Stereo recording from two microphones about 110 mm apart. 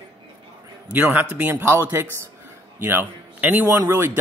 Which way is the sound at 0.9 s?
15° right (ahead or behind).